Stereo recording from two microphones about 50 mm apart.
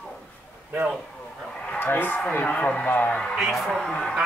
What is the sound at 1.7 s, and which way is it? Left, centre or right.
Speech, left.